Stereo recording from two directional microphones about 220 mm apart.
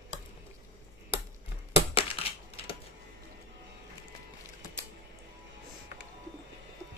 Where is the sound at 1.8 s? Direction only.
25° left (ahead or behind).